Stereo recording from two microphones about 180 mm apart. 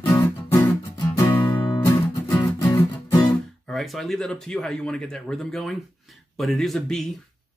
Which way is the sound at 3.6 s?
Centre (ahead or behind).